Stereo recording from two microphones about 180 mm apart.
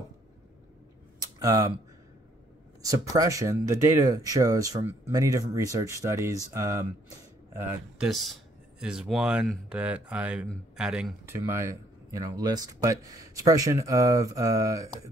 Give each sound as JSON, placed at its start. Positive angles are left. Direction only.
{"t": 1.2, "sound": "a sound", "side_deg": -20}
{"t": 2.8, "sound": "speech", "side_deg": -20}
{"t": 8.1, "sound": "speech", "side_deg": 0}